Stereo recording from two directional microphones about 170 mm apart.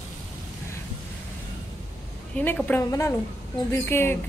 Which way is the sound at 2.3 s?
10° left (ahead or behind).